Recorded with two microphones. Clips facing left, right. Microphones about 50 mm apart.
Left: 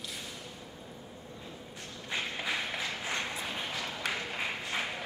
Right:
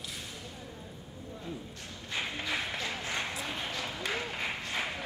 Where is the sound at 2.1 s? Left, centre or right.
Centre.